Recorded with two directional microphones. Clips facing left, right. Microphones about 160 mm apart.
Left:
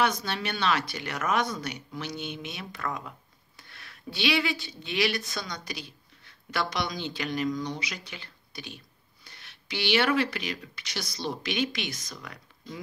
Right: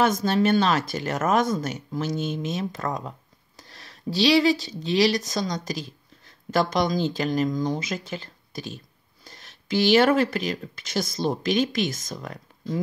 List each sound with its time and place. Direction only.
0.0 s speech: 45° right (ahead or behind)